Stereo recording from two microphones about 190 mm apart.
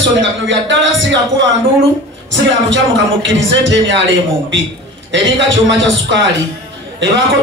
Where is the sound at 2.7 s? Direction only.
75° right (ahead or behind).